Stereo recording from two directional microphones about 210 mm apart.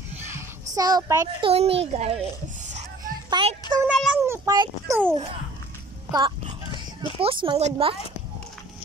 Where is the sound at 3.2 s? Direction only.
20° right (ahead or behind).